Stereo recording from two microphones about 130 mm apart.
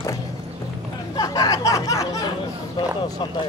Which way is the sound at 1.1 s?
30° left (ahead or behind).